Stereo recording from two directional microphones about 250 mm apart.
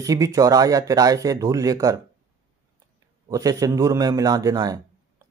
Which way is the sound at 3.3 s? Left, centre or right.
Centre.